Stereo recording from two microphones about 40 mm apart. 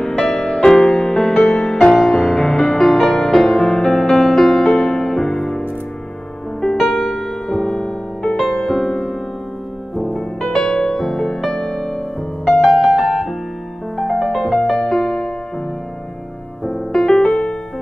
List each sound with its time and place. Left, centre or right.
0.0 s music: centre
8.7 s music: centre
10.1 s music: centre
12.4 s music: centre
16.6 s piano: centre
17.3 s music: left